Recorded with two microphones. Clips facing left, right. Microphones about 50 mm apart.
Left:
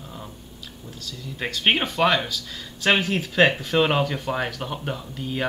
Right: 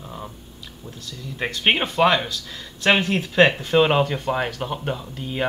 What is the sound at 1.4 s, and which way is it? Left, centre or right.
Speech, centre.